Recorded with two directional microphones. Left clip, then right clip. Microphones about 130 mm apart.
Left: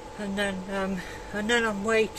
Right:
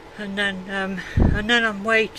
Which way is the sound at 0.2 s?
30° right (ahead or behind).